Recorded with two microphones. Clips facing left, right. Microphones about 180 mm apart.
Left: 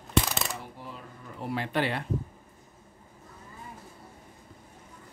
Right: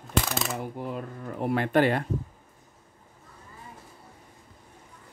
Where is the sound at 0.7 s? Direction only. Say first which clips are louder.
Right 10 dB; 55° right (ahead or behind).